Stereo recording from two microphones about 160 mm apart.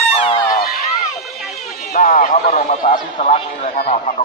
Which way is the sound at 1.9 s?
60° left (ahead or behind).